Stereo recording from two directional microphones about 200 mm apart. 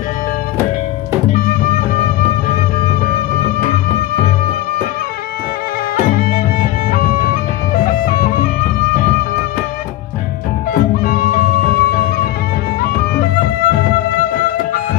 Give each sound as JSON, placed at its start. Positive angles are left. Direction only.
{"t": 1.3, "sound": "music", "side_deg": 45}
{"t": 6.1, "sound": "music", "side_deg": 45}
{"t": 10.7, "sound": "music", "side_deg": 45}
{"t": 13.7, "sound": "music", "side_deg": 45}